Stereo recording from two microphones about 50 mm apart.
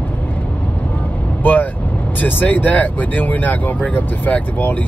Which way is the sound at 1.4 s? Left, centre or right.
Left.